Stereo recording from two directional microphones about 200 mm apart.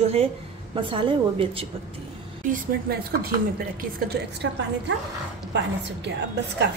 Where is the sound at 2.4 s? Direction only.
45° right (ahead or behind).